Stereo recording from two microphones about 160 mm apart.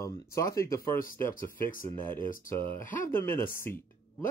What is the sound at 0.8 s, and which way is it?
Speech, 60° left (ahead or behind).